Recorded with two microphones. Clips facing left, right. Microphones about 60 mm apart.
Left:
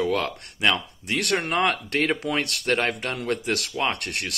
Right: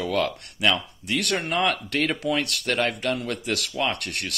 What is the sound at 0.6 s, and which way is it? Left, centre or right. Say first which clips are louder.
Speech: even; left.